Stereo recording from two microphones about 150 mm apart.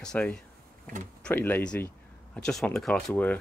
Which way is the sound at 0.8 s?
60° right (ahead or behind).